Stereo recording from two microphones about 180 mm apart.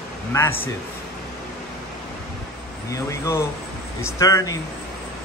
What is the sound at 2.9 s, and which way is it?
Speech, 15° left (ahead or behind).